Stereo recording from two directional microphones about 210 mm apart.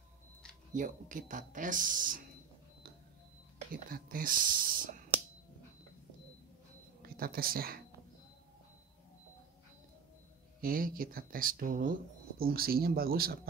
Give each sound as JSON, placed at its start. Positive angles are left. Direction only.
{"t": 0.7, "sound": "speech", "side_deg": -40}
{"t": 3.7, "sound": "speech", "side_deg": -40}
{"t": 7.0, "sound": "speech", "side_deg": -45}
{"t": 10.6, "sound": "speech", "side_deg": -40}